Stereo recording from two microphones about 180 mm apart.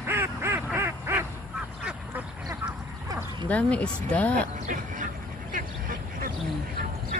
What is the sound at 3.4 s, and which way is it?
Speech, 5° left (ahead or behind).